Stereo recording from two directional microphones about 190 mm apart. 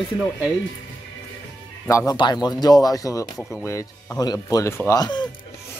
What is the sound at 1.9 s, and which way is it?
Speech, 20° left (ahead or behind).